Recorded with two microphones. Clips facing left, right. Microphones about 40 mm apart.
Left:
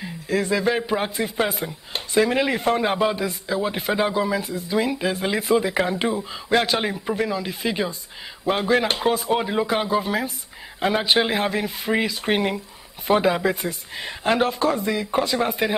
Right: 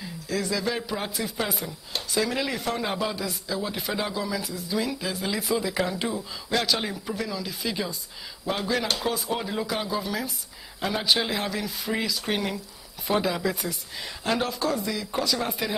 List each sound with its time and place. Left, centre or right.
0.0 s a man's voice: left